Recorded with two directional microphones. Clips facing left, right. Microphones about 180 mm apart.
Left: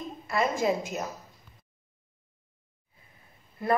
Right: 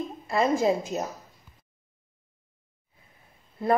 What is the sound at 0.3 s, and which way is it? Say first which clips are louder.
Speech: right 3 dB; 30° right (ahead or behind).